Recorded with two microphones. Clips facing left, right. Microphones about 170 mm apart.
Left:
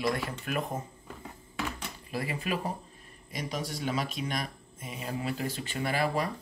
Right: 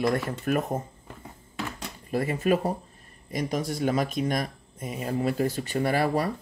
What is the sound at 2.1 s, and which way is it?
Speech, 45° right (ahead or behind).